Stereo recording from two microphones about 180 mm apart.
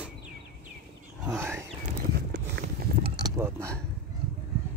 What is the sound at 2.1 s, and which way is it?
Horse, 65° right (ahead or behind).